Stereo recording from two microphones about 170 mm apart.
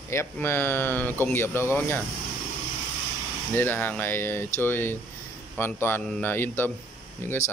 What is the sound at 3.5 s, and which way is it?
Speech, 10° left (ahead or behind).